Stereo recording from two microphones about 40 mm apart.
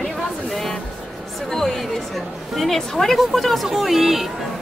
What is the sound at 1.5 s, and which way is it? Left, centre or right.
Speech, centre.